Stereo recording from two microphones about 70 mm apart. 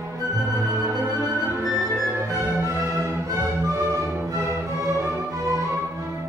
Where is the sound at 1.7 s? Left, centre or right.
Centre.